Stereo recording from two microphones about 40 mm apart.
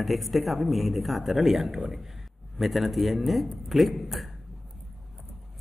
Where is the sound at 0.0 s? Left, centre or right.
Centre.